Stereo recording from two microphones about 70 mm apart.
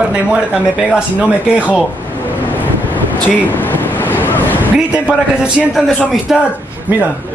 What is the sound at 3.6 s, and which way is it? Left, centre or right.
Waves, left.